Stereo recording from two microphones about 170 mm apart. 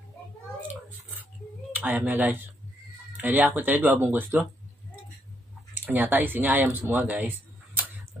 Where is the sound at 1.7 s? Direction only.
10° right (ahead or behind).